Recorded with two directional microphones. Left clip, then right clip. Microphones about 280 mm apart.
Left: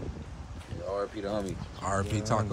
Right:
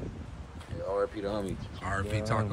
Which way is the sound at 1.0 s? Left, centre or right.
Centre.